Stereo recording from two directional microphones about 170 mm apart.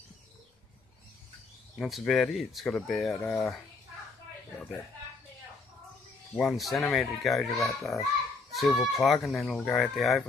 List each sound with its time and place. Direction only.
1.8 s speech: centre (ahead or behind)
6.3 s a child's voice: centre (ahead or behind)